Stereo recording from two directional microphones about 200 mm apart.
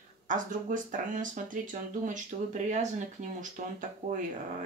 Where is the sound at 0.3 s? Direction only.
40° right (ahead or behind).